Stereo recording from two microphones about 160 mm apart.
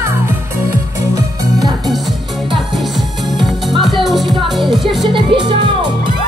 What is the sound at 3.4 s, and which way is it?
Music, centre (ahead or behind).